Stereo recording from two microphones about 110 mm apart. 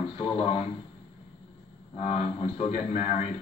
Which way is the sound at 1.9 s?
60° left (ahead or behind).